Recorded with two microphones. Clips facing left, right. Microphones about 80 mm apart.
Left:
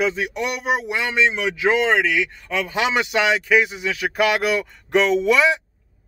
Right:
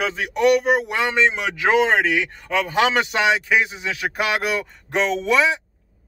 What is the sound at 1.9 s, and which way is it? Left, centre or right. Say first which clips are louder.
Speech: even; right.